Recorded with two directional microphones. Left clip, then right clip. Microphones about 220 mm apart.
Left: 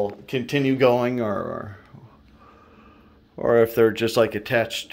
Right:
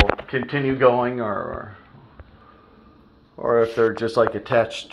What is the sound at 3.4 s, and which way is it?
Speech, 40° left (ahead or behind).